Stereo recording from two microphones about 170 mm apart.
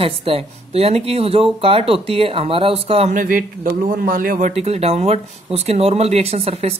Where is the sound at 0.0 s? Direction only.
35° right (ahead or behind).